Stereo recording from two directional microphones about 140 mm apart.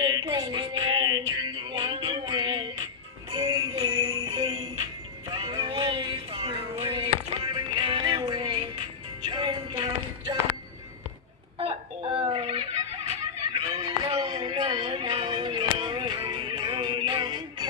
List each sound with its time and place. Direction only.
0.0 s music: 30° right (ahead or behind)
3.3 s jingle bell: 30° right (ahead or behind)
4.4 s jingle bell: 40° right (ahead or behind)
5.3 s music: 30° right (ahead or behind)
11.5 s a sound: 40° right (ahead or behind)
13.5 s a sound: 35° right (ahead or behind)